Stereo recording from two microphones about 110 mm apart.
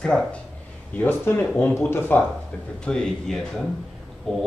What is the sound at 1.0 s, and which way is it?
Speech, 20° left (ahead or behind).